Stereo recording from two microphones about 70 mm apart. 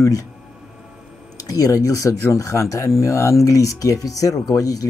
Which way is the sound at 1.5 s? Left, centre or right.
Left.